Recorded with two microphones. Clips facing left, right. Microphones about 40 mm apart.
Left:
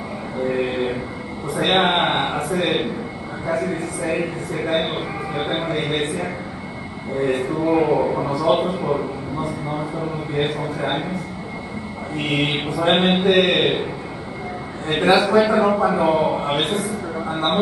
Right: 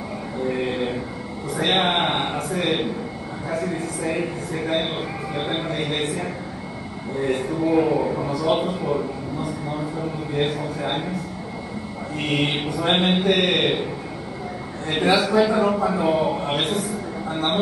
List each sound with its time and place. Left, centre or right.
0.5 s a sound: centre
3.4 s a man's voice: centre
12.4 s a man's voice: centre
14.9 s a man's voice: centre